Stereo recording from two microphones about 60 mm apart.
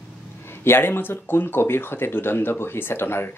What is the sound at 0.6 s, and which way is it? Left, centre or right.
Speech, left.